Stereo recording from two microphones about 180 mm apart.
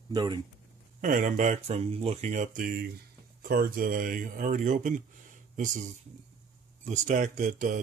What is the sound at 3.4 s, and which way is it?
Speech, 55° right (ahead or behind).